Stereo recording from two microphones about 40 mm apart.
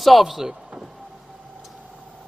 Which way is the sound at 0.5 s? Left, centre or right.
Right.